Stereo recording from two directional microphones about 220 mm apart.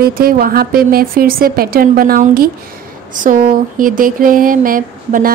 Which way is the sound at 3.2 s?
40° right (ahead or behind).